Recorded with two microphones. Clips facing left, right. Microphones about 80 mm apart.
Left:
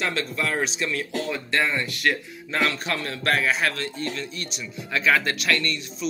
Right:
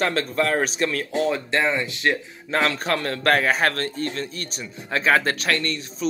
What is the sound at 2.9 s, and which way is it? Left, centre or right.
Speech, right.